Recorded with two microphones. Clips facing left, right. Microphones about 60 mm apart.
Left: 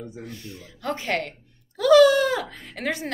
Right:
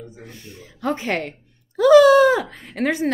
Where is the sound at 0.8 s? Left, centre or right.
Right.